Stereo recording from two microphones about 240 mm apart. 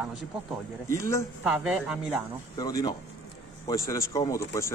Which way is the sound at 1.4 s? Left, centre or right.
Centre.